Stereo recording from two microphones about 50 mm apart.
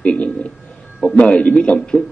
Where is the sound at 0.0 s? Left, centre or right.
Left.